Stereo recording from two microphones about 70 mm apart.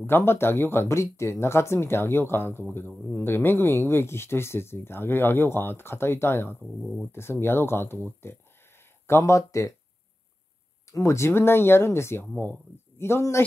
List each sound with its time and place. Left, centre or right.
0.0 s speech: left
10.9 s speech: left